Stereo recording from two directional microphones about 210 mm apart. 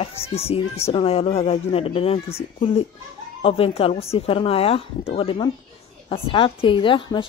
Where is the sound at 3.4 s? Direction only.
25° left (ahead or behind).